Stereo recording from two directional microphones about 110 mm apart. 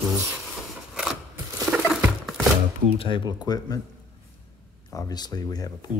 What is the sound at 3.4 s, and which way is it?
Speech, 35° left (ahead or behind).